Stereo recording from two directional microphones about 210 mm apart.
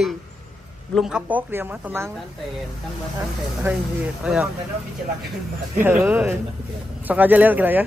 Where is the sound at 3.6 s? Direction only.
5° right (ahead or behind).